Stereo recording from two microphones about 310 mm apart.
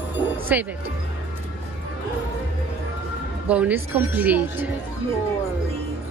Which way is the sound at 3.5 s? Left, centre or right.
Centre.